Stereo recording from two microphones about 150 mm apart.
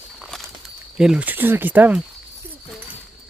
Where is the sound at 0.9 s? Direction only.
5° right (ahead or behind).